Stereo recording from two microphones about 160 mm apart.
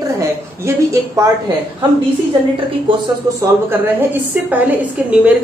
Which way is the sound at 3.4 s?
15° right (ahead or behind).